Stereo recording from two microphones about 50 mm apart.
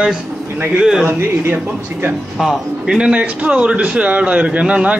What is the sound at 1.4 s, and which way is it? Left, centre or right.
Speech, right.